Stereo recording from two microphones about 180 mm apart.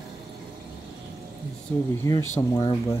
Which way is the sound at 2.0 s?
20° left (ahead or behind).